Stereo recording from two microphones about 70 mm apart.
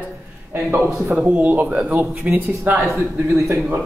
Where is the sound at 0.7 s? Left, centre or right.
Right.